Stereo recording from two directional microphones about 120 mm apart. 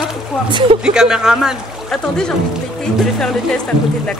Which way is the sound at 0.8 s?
5° right (ahead or behind).